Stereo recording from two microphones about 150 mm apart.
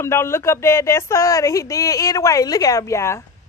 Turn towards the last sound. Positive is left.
turn(degrees=20)  # may be behind; listen again after turning